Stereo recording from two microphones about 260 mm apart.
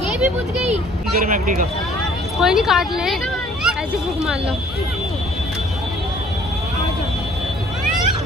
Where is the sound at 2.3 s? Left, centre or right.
Centre.